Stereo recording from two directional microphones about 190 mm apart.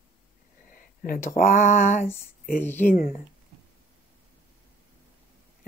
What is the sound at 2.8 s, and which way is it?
Speech, 50° left (ahead or behind).